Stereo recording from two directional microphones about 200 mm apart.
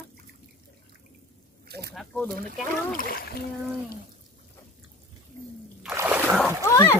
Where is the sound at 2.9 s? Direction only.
45° left (ahead or behind).